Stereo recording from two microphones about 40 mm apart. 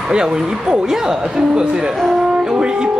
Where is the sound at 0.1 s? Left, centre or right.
Centre.